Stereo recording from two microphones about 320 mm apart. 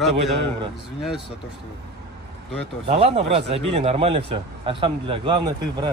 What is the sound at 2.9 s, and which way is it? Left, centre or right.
A man's voice, centre.